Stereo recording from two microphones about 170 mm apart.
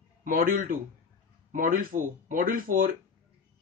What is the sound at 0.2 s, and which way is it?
Speech, 55° right (ahead or behind).